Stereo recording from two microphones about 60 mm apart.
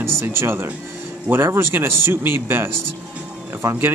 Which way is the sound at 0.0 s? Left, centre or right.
Right.